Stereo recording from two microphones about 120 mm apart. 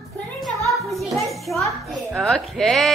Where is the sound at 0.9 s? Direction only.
Centre (ahead or behind).